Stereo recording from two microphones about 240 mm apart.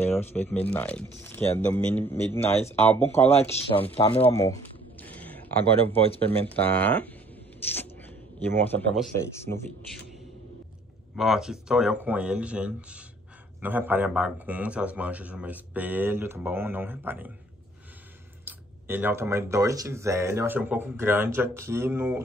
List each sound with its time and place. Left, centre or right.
0.0 s speech: centre
5.0 s a sound: centre
5.9 s speech: left
6.2 s speech: centre
8.4 s speech: centre
11.1 s speech: centre
18.4 s speech: centre